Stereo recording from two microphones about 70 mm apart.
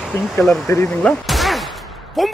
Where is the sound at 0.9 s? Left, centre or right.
Centre.